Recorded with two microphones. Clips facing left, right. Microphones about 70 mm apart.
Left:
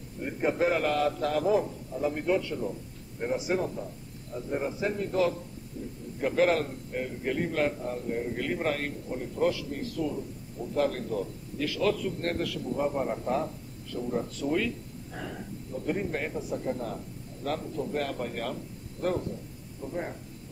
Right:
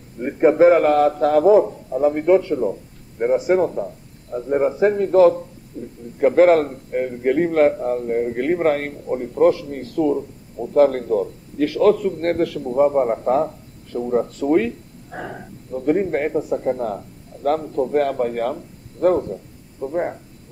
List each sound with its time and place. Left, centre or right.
0.2 s a man's voice: right